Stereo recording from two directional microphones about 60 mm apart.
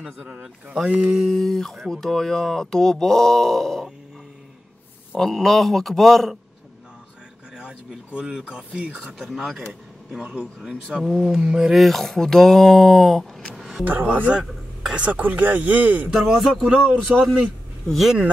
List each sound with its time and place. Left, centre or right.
0.3 s speech: centre
1.3 s speech: centre
5.1 s speech: centre
7.5 s speech: centre
10.9 s speech: centre
11.7 s speech: centre; by 16.1 s right
16.1 s speech: centre
17.1 s speech: centre